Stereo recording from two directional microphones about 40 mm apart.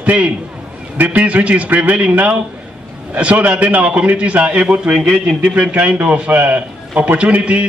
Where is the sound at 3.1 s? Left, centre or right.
Right.